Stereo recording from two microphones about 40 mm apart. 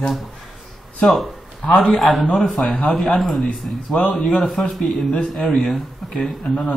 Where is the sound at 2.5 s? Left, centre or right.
Left.